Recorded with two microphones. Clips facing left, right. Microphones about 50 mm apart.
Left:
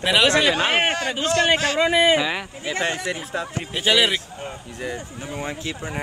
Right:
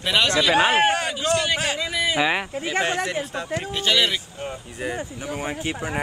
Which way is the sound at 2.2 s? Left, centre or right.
Centre.